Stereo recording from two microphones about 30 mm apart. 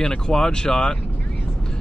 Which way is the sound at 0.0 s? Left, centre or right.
Left.